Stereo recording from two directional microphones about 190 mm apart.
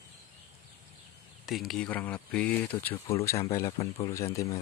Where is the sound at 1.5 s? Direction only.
Centre (ahead or behind); by 4.5 s 15° left (ahead or behind).